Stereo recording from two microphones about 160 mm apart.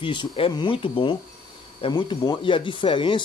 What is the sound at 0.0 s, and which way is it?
Speech, 30° left (ahead or behind).